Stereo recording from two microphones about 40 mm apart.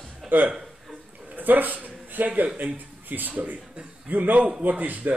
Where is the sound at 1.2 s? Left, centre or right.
Right.